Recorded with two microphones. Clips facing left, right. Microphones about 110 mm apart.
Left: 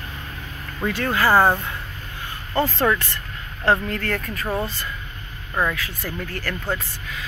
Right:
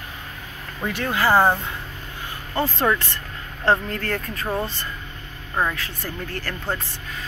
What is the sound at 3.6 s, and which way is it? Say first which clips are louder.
Speech: even; 25° right (ahead or behind).